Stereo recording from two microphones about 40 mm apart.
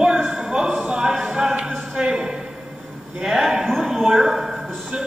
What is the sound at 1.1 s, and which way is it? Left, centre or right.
Music, centre.